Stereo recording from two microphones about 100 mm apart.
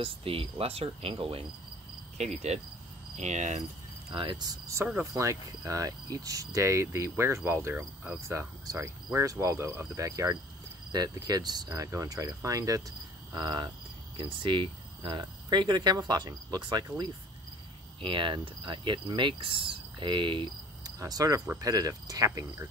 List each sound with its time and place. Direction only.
0.0 s speech: 65° right (ahead or behind)
2.1 s cricket: 90° right
4.1 s speech: 60° right (ahead or behind)
4.4 s speech: 35° right (ahead or behind)
5.1 s cricket: 35° right (ahead or behind)
13.3 s speech: 45° right (ahead or behind)
18.0 s cricket: 55° right (ahead or behind)
21.0 s cricket: 35° right (ahead or behind)